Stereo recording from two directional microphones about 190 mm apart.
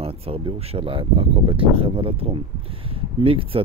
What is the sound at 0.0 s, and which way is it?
Speech, 30° right (ahead or behind).